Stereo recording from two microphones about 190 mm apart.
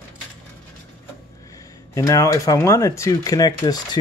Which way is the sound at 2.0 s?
15° left (ahead or behind).